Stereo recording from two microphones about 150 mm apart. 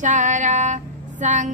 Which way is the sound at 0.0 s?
55° right (ahead or behind).